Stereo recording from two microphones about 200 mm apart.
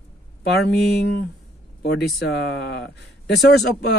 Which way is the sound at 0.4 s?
55° left (ahead or behind).